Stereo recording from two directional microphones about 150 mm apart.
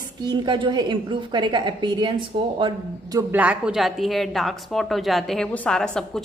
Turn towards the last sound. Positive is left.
turn(degrees=5)  # may be behind; listen again after turning